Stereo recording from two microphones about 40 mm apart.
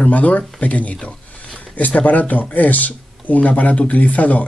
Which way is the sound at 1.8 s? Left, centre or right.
Left.